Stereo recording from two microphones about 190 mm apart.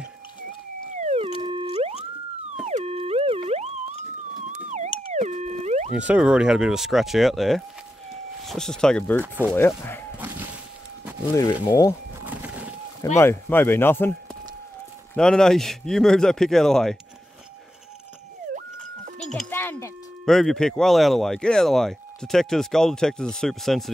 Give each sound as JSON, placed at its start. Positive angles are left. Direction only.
{"t": 0.9, "sound": "a sound", "side_deg": -35}
{"t": 1.4, "sound": "theremin", "side_deg": -25}
{"t": 5.1, "sound": "theremin", "side_deg": -35}
{"t": 5.9, "sound": "speech", "side_deg": -5}
{"t": 10.1, "sound": "a sound", "side_deg": -10}
{"t": 11.6, "sound": "speech", "side_deg": 20}
{"t": 12.2, "sound": "a sound", "side_deg": -10}
{"t": 13.2, "sound": "speech", "side_deg": 10}
{"t": 15.1, "sound": "speech", "side_deg": 5}
{"t": 19.5, "sound": "wind chime", "side_deg": 10}
{"t": 20.2, "sound": "speech", "side_deg": 0}